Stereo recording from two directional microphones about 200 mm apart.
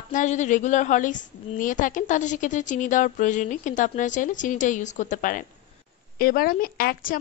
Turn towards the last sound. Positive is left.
turn(degrees=45)  # may be behind; listen again after turning